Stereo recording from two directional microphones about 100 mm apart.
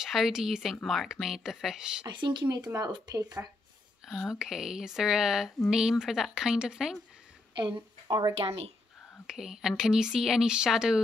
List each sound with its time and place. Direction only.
0.0 s speech: 5° right (ahead or behind)
2.0 s speech: 50° right (ahead or behind)
2.7 s speech: 40° right (ahead or behind)
4.0 s speech: 5° right (ahead or behind)
7.5 s speech: 50° right (ahead or behind)
8.4 s speech: 90° right
9.2 s speech: 5° right (ahead or behind)